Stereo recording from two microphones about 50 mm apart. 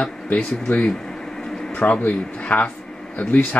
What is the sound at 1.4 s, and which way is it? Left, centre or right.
Air conditioning, centre.